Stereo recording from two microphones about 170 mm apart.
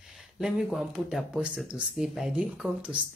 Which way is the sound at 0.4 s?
5° right (ahead or behind).